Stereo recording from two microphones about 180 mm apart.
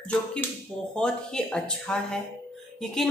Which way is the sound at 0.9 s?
5° left (ahead or behind).